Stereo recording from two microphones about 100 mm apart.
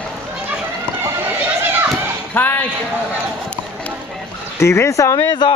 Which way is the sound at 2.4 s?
15° left (ahead or behind).